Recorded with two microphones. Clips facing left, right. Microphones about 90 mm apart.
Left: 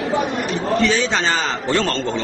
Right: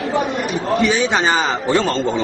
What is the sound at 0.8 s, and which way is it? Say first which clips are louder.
A man's voice: right 3 dB; 15° right (ahead or behind).